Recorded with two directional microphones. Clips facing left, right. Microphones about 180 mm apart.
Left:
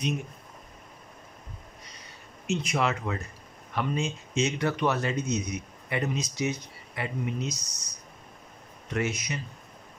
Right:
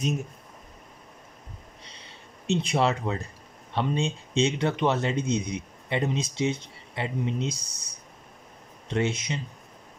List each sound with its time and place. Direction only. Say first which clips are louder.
1.9 s a sound: right 1 dB; 25° right (ahead or behind)
3.7 s speech: right 2 dB; 30° right (ahead or behind)
8.8 s speech: right 3 dB; 25° right (ahead or behind)